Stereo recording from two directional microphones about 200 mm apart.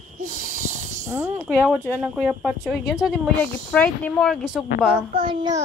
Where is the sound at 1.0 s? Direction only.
15° right (ahead or behind).